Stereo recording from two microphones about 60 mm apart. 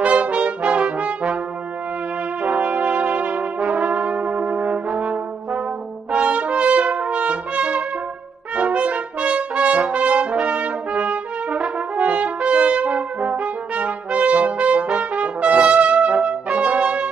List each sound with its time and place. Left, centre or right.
0.0 s brass instrument: right
0.6 s brass instrument: centre
2.4 s brass instrument: centre
2.7 s brass instrument: centre
6.1 s brass instrument: right
7.1 s trumpet: right
8.9 s brass instrument: centre
12.0 s brass instrument: right
12.8 s brass instrument: centre
13.8 s brass instrument: right
16.1 s brass instrument: centre
16.6 s brass instrument: centre